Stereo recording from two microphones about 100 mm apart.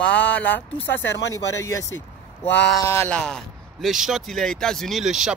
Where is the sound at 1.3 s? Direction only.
30° left (ahead or behind).